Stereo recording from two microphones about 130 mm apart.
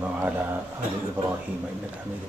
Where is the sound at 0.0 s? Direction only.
15° right (ahead or behind).